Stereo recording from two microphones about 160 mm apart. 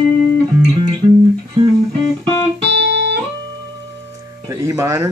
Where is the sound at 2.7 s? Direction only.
90° right.